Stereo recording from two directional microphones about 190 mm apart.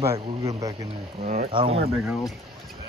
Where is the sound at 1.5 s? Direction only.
30° right (ahead or behind).